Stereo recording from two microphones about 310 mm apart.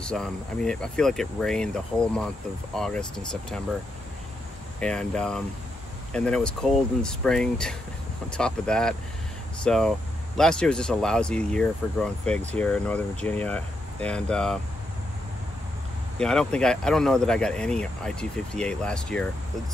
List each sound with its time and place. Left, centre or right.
0.0 s speech: centre
4.7 s speech: centre
16.2 s speech: centre